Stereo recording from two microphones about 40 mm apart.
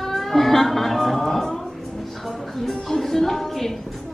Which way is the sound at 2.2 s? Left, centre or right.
Centre.